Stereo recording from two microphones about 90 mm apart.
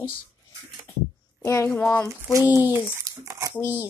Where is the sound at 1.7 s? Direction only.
15° left (ahead or behind).